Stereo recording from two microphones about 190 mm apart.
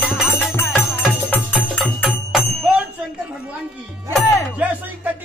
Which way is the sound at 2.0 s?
5° right (ahead or behind).